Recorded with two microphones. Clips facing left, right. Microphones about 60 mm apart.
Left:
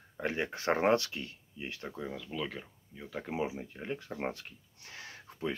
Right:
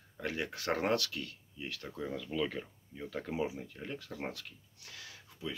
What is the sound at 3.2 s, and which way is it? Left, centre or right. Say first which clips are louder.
Speech: left 2 dB; left.